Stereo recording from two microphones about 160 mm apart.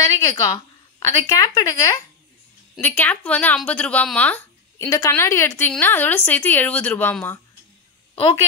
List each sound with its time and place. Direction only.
0.0 s speech: 20° left (ahead or behind)
2.8 s a woman's voice: 10° left (ahead or behind)
4.8 s a woman's voice: 20° left (ahead or behind)